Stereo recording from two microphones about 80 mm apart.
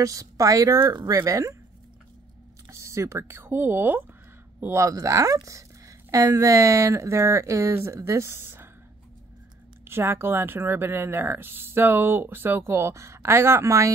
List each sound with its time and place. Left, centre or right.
0.0 s speech: right
2.7 s speech: right
4.7 s speech: right
9.8 s speech: right